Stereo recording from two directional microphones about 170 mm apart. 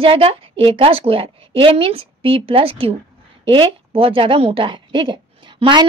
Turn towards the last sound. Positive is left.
turn(degrees=-25)  # may be behind; listen again after turning